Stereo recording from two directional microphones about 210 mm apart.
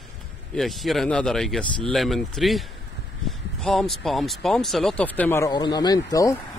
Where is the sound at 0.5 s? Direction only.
Centre (ahead or behind); by 6.4 s 15° left (ahead or behind).